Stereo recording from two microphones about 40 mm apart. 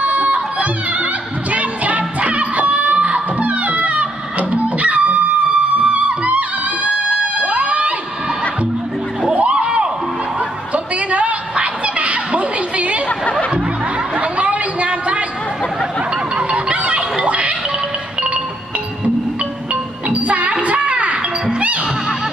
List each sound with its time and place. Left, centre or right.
0.0 s music: right
9.3 s a sound: right
13.2 s music: left
14.1 s chatter: right
16.3 s music: right
19.7 s music: right